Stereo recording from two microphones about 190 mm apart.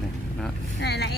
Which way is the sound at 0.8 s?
60° left (ahead or behind).